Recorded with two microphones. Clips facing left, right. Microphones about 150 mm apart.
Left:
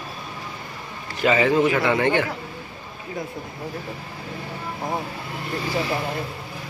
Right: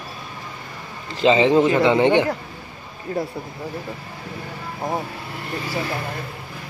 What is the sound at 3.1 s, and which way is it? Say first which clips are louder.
Speech: right 6 dB; 50° right (ahead or behind).